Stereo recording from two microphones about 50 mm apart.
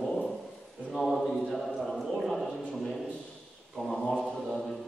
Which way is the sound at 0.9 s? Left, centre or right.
Centre.